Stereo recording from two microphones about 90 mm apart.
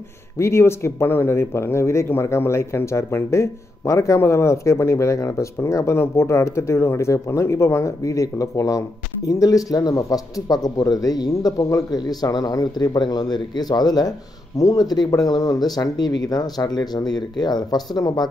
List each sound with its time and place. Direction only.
0.4 s speech: 30° left (ahead or behind); by 18.3 s 50° left (ahead or behind)